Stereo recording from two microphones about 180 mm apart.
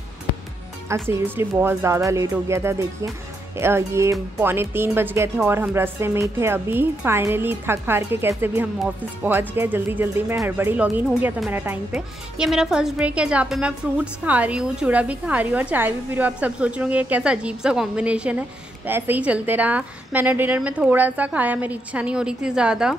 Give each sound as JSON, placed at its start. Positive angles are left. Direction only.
{"t": 0.8, "sound": "speech", "side_deg": -15}